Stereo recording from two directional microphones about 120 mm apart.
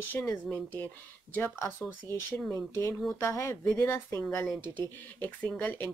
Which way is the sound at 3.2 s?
25° left (ahead or behind).